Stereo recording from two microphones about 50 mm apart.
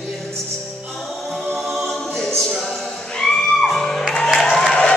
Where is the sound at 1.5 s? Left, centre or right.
Centre.